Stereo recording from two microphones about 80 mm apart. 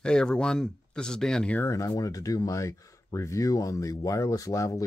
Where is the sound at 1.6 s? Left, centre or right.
Left.